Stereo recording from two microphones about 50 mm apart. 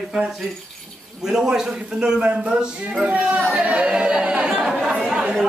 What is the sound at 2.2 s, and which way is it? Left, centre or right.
Speech, right.